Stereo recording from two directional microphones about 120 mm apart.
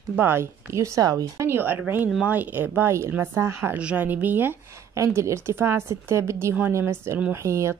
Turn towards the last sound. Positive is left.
turn(degrees=-25)  # may be behind; listen again after turning